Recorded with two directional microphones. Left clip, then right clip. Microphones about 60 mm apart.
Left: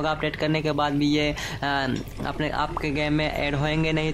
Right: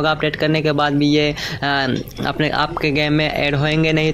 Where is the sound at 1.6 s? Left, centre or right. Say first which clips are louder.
Right 7 dB; centre.